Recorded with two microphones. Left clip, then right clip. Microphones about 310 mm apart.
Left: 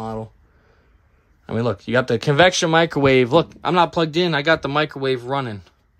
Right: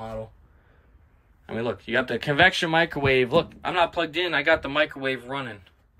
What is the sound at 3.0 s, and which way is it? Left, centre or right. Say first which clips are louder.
Speech: left 7 dB; right.